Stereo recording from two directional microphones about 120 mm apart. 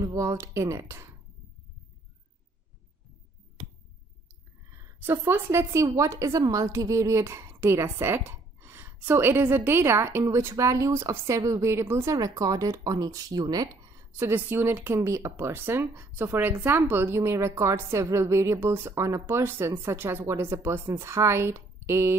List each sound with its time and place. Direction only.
0.0 s a woman's voice: 25° right (ahead or behind)
4.6 s a woman's voice: 25° right (ahead or behind)